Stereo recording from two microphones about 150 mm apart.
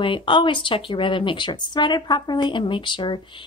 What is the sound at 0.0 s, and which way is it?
Speech, 35° left (ahead or behind).